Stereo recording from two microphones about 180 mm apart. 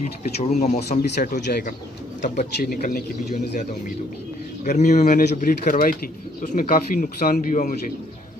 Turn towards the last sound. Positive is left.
turn(degrees=45)  # may be behind; listen again after turning